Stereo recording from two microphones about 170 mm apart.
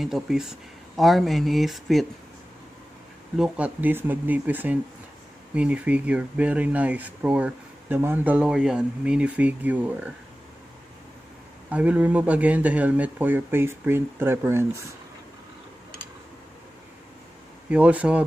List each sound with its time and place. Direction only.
0.0 s speech: centre (ahead or behind)
3.3 s speech: 5° right (ahead or behind)
11.7 s speech: 10° right (ahead or behind)
17.6 s speech: 5° right (ahead or behind)